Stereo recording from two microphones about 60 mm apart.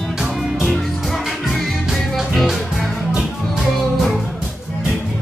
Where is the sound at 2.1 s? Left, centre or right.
Centre.